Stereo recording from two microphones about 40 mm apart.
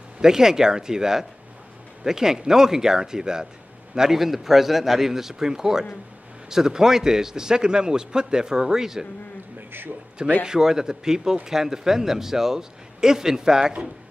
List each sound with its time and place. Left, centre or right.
0.2 s a man's voice: centre
9.7 s a man's voice: right
10.4 s a man's voice: centre